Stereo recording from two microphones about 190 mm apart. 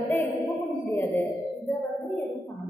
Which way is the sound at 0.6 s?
15° left (ahead or behind).